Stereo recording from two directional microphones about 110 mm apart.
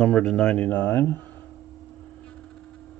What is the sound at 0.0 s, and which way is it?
Speech, 5° left (ahead or behind).